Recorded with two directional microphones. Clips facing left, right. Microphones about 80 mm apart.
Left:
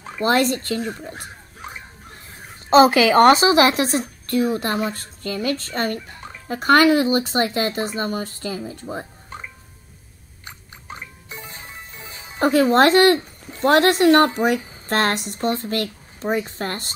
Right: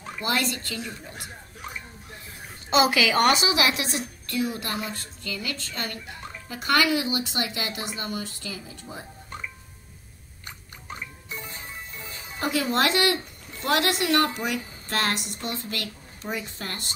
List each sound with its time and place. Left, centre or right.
0.2 s speech: left
11.5 s music: left
14.9 s speech: left